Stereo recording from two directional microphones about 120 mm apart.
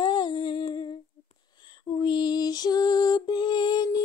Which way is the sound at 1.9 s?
40° left (ahead or behind).